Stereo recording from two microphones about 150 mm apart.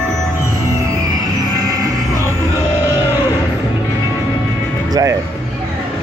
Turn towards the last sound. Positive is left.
turn(degrees=-20)  # may be behind; listen again after turning